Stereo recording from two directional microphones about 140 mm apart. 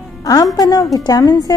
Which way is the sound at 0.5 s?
25° left (ahead or behind).